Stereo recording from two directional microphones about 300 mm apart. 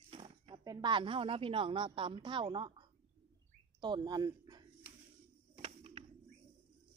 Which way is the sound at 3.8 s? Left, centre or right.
Centre.